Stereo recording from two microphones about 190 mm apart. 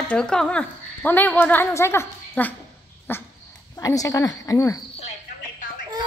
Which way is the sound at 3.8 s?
15° left (ahead or behind).